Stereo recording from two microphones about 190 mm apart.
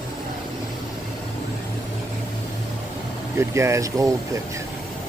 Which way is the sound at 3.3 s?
15° right (ahead or behind).